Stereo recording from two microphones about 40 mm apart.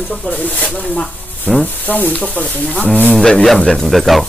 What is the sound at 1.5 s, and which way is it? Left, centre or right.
Speech, left.